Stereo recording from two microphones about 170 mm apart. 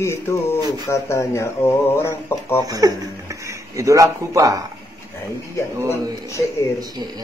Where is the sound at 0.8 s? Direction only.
15° left (ahead or behind).